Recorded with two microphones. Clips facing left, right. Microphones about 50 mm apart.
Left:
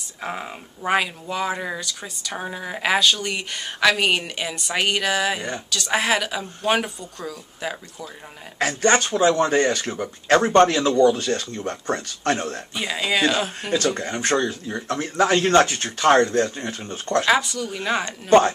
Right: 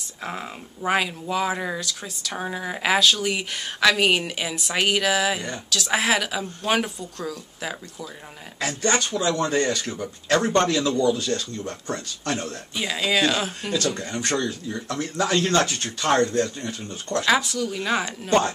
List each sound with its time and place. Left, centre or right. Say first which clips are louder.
0.2 s speech: left 2 dB; centre
8.5 s speech: left 5 dB; left
12.7 s speech: even; centre
13.6 s speech: left 3 dB; left
17.3 s speech: right 2 dB; centre